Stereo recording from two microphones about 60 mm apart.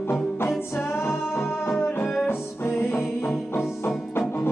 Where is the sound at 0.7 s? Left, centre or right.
Left.